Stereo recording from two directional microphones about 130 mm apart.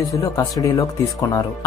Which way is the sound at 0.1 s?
25° left (ahead or behind).